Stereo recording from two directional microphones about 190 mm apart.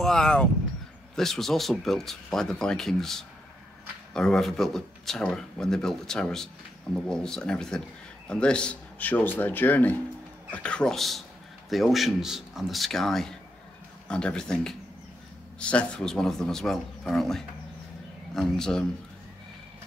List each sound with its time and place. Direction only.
0.0 s speech: 5° left (ahead or behind)